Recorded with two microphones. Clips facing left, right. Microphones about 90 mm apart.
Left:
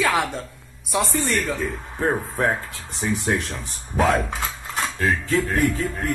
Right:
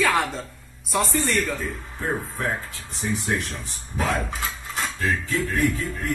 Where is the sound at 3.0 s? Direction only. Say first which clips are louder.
Left 3 dB; 90° left.